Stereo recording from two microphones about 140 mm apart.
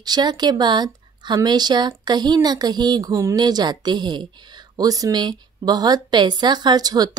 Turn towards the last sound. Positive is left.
turn(degrees=-30)  # may be behind; listen again after turning